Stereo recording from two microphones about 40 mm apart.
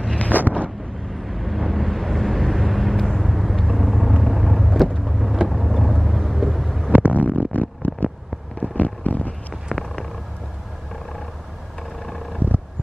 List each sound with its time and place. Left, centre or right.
0.3 s wind noise: right
1.1 s vehicle: centre
6.9 s stomach rumble: right
7.3 s stomach rumble: left
8.5 s a sound: left
9.7 s purr: centre
12.4 s vehicle: right